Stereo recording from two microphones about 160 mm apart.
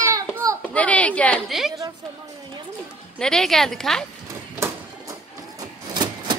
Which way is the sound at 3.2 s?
5° left (ahead or behind).